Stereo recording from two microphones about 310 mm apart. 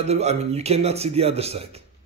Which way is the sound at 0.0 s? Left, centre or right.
Right.